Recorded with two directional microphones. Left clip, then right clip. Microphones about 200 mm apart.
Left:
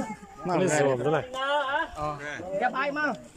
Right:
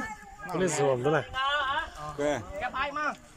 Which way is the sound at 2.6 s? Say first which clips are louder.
Left 5 dB; 35° left (ahead or behind).